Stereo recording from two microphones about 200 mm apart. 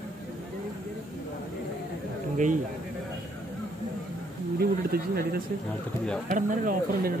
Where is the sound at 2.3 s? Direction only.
40° right (ahead or behind).